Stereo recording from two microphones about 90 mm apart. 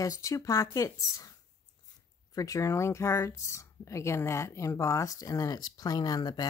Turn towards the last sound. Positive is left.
turn(degrees=50)  # may be behind; listen again after turning